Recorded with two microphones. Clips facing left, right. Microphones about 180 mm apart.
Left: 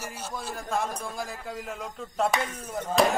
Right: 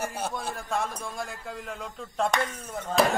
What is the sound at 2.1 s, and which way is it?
Speech, 5° left (ahead or behind).